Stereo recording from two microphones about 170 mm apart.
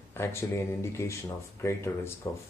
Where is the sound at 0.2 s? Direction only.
15° left (ahead or behind).